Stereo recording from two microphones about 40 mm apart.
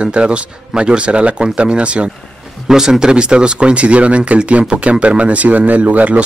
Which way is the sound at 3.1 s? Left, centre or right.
Right.